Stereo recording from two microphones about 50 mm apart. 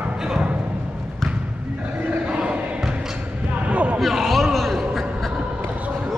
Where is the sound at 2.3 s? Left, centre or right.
Right.